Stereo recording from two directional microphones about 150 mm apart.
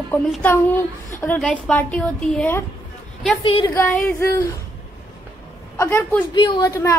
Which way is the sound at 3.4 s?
35° left (ahead or behind).